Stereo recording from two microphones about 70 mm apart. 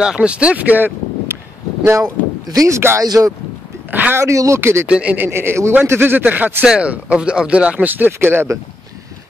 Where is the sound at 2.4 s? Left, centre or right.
Right.